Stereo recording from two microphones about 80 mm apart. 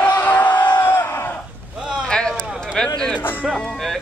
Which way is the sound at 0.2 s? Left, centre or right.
Centre.